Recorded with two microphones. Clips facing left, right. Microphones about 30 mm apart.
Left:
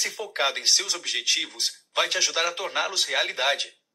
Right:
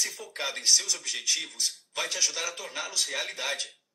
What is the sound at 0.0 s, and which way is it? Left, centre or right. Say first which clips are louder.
Speech: left 7 dB; left.